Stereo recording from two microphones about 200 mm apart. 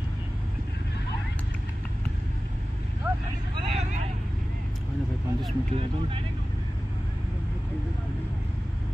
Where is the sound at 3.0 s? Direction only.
5° right (ahead or behind).